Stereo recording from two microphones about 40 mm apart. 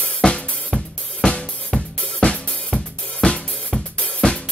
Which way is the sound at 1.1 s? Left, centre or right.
Left.